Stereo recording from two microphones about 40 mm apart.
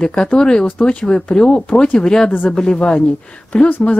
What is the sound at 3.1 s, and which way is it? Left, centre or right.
Speech, left.